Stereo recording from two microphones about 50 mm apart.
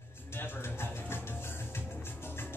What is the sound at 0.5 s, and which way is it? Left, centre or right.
Music, left.